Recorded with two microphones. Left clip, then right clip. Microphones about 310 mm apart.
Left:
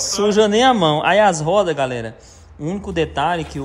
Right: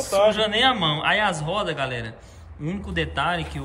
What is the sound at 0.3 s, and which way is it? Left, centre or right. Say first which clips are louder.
A man's voice: left 6 dB; centre.